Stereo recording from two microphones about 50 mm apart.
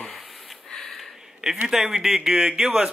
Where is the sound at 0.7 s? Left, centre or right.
Centre.